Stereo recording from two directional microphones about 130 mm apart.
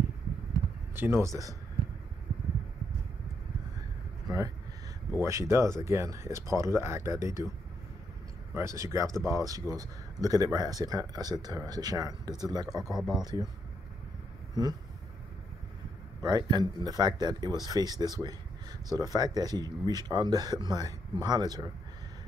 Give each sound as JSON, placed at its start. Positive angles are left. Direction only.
{"t": 0.9, "sound": "speech", "side_deg": -20}
{"t": 5.2, "sound": "speech", "side_deg": -20}
{"t": 8.5, "sound": "speech", "side_deg": -25}
{"t": 12.9, "sound": "speech", "side_deg": -5}
{"t": 13.2, "sound": "speech", "side_deg": -30}
{"t": 14.6, "sound": "speech", "side_deg": -30}
{"t": 16.2, "sound": "speech", "side_deg": -30}